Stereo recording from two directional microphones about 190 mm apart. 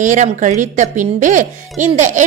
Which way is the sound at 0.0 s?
40° right (ahead or behind).